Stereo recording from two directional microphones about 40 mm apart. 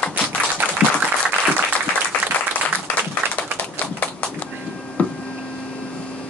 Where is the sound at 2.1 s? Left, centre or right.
Left.